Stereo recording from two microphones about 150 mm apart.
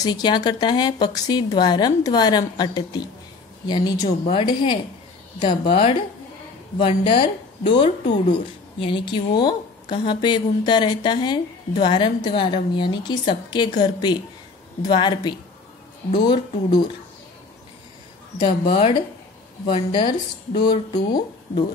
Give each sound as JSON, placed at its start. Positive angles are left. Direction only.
{"t": 0.0, "sound": "speech", "side_deg": 30}
{"t": 18.4, "sound": "speech", "side_deg": 35}